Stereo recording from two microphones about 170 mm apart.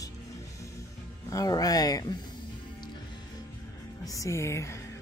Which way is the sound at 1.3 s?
20° left (ahead or behind).